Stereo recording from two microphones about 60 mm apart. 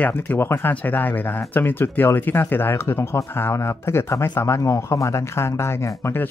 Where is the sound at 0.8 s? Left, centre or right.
Left.